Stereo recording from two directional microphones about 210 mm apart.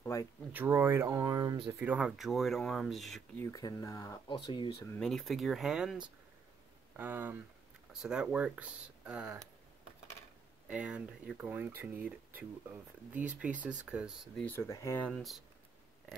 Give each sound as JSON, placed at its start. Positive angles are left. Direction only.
{"t": 0.0, "sound": "speech", "side_deg": 15}
{"t": 0.5, "sound": "speech", "side_deg": -10}
{"t": 3.5, "sound": "speech", "side_deg": 15}
{"t": 4.9, "sound": "speech", "side_deg": 5}
{"t": 10.7, "sound": "speech", "side_deg": -5}